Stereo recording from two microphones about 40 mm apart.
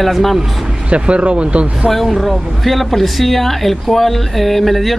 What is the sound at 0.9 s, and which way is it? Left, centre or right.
Speech, right.